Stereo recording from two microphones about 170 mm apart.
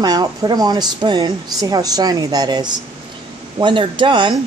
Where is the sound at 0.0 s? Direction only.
20° right (ahead or behind).